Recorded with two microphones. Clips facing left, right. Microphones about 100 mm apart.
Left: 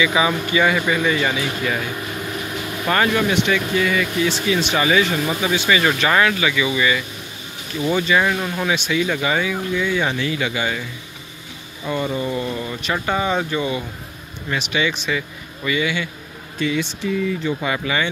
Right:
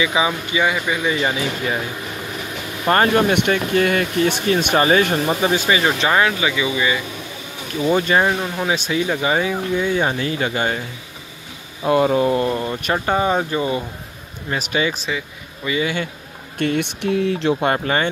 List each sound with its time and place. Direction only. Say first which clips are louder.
0.0 s speech: left 1 dB; 20° right (ahead or behind)
2.9 s speech: right 3 dB; 35° right (ahead or behind)
3.3 s speech: right 1 dB; 55° right (ahead or behind)
5.1 s speech: right 3 dB; 35° right (ahead or behind)
5.7 s speech: even; 25° right (ahead or behind)
8.1 s speech: right 1 dB; 25° right (ahead or behind)
8.7 s speech: even; 40° right (ahead or behind)
9.0 s speech: right 1 dB; 25° right (ahead or behind)
11.8 s speech: right 7 dB; 70° right (ahead or behind); by 12.6 s 55° right (ahead or behind)
12.6 s speech: right 3 dB; 35° right (ahead or behind)
15.0 s speech: left 2 dB; 20° right (ahead or behind)
15.8 s speech: right 2 dB; 45° right (ahead or behind)
16.5 s speech: right 2 dB; 60° right (ahead or behind); by 17.6 s 75° right (ahead or behind)
17.7 s speech: right 2 dB; 40° right (ahead or behind)